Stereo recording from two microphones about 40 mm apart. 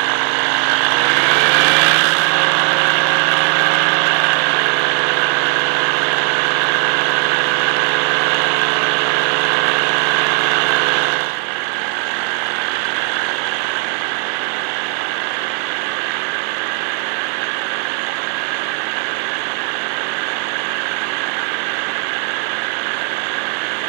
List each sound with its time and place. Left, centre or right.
0.7 s vehicle: centre